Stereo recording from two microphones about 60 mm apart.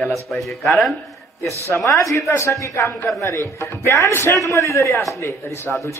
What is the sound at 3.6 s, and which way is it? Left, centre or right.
Speech, left.